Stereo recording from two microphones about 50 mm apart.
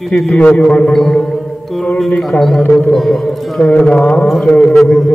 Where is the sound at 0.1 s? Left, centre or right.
Centre.